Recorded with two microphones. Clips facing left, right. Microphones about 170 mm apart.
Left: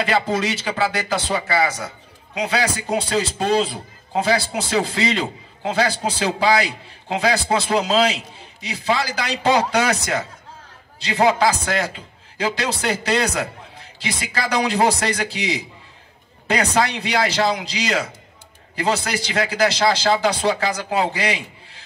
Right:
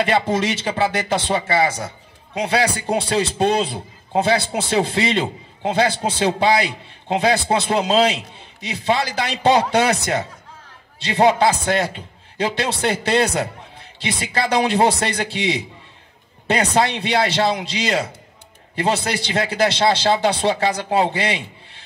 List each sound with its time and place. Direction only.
0.0 s a man's voice: 25° right (ahead or behind)
4.1 s a man's voice: 25° right (ahead or behind)